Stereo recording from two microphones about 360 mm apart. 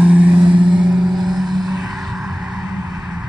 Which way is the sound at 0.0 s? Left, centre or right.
Centre.